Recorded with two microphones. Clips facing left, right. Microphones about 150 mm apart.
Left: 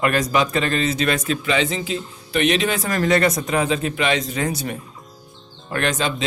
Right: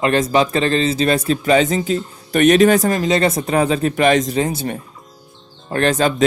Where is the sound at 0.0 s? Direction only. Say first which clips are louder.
Right 4 dB; 25° right (ahead or behind); by 2.9 s 45° right (ahead or behind).